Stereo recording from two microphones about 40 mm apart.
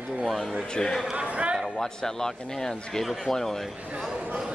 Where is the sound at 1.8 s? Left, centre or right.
Centre.